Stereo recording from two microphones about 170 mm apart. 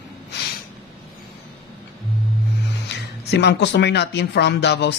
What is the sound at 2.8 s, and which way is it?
Speech, 85° left.